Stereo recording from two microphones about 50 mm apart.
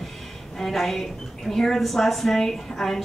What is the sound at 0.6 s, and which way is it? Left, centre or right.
A woman's voice, centre.